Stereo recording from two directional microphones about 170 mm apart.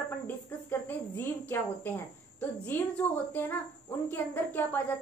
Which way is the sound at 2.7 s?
10° left (ahead or behind).